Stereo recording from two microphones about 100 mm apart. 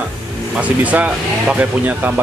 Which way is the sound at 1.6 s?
15° right (ahead or behind).